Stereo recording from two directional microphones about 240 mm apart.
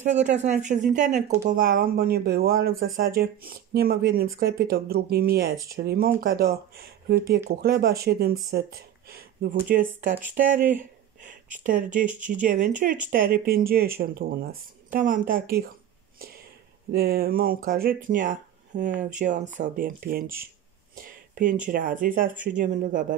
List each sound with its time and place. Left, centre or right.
0.0 s speech: right
10.8 s a sound: right
11.6 s speech: right
16.9 s speech: right
21.0 s a sound: right
21.6 s speech: right